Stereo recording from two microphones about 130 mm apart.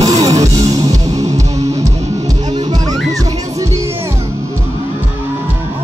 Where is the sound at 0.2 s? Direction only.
25° right (ahead or behind).